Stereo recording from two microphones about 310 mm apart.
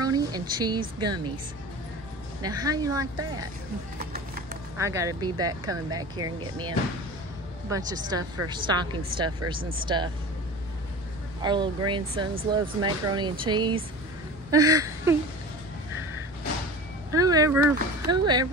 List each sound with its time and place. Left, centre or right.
0.0 s speech: centre
2.4 s speech: centre
4.0 s a sound: right
4.7 s speech: centre
7.7 s speech: centre
11.4 s speech: centre
17.1 s speech: centre